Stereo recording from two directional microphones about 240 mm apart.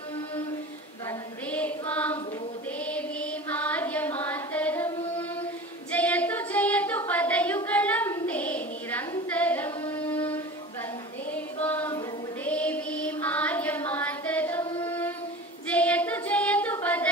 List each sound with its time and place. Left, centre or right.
1.5 s music: centre
2.9 s carnatic music: centre
5.9 s female singing: centre
11.6 s a sound: centre
12.4 s music: centre
14.8 s female singing: centre